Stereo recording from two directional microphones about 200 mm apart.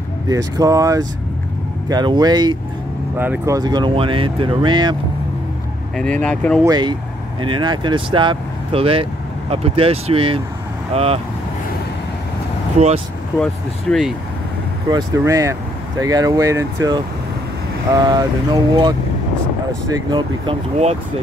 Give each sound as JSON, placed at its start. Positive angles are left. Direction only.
{"t": 0.3, "sound": "speech", "side_deg": -15}
{"t": 5.9, "sound": "speech", "side_deg": 5}
{"t": 6.6, "sound": "speech", "side_deg": -20}
{"t": 12.7, "sound": "speech", "side_deg": -35}
{"t": 13.4, "sound": "speech", "side_deg": 0}
{"t": 14.9, "sound": "speech", "side_deg": -20}
{"t": 20.1, "sound": "speech", "side_deg": -25}